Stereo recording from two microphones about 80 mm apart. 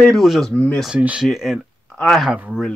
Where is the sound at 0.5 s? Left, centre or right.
Centre.